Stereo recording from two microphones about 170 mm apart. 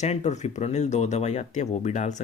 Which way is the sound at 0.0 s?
40° left (ahead or behind).